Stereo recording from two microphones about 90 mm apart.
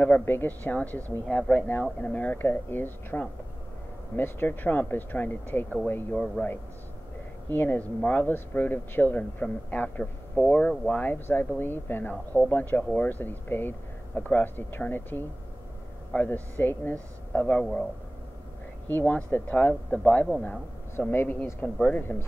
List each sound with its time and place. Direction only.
0.0 s speech: 20° left (ahead or behind)
6.1 s speech: 10° left (ahead or behind)
7.4 s speech: 20° left (ahead or behind)
18.9 s speech: 20° left (ahead or behind)